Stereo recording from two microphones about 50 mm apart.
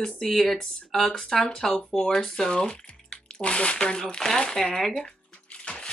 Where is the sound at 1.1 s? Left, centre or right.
Centre.